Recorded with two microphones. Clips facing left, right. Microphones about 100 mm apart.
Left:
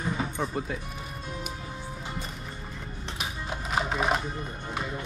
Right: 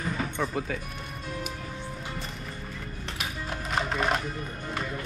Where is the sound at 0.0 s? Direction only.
10° left (ahead or behind).